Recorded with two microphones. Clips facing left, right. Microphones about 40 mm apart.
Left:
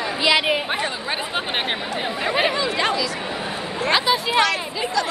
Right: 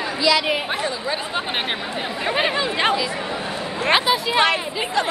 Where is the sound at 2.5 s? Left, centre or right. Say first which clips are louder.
Right 1 dB; right.